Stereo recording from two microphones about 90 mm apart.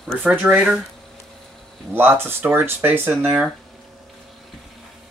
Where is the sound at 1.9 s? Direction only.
25° right (ahead or behind).